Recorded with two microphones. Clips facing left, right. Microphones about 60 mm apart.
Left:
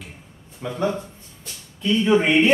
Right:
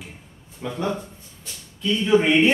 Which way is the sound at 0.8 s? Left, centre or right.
Centre.